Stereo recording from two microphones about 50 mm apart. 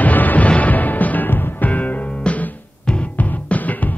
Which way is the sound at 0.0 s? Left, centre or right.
Left.